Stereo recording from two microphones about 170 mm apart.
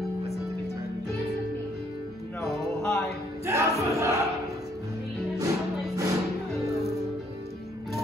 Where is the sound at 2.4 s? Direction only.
5° left (ahead or behind).